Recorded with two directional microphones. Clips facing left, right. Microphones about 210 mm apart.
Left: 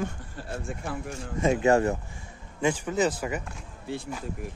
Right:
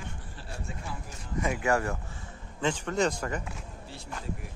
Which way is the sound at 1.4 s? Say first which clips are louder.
Left 6 dB; 25° left (ahead or behind).